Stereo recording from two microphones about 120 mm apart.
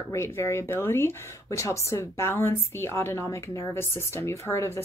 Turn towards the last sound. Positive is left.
turn(degrees=20)  # may be behind; listen again after turning